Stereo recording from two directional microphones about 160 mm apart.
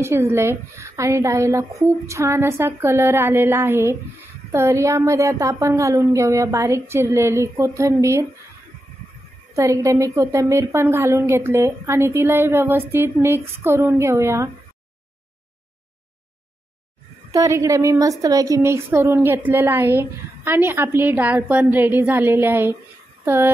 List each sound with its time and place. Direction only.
0.0 s a woman's voice: 15° right (ahead or behind)
9.6 s a woman's voice: 20° right (ahead or behind)
17.3 s a woman's voice: 20° right (ahead or behind)